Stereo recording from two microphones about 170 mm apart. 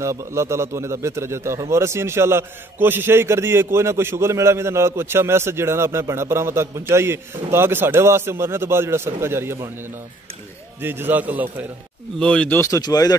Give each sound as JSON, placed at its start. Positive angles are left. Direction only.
{"t": 0.0, "sound": "a man's voice", "side_deg": -15}
{"t": 10.8, "sound": "a man's voice", "side_deg": -15}
{"t": 12.2, "sound": "speech", "side_deg": 5}